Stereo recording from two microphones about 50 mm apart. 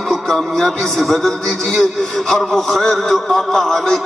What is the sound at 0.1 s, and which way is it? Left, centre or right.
A man's voice, centre.